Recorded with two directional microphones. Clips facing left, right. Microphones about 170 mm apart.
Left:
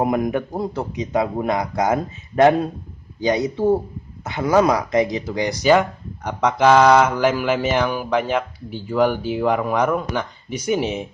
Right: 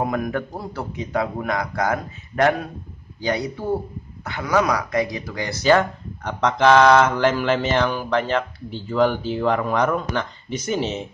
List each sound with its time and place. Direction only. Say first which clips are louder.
0.0 s a man's voice: left 4 dB; 20° left (ahead or behind)